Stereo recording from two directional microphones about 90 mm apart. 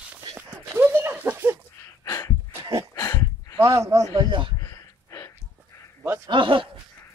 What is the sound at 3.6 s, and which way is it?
Speech, 35° right (ahead or behind).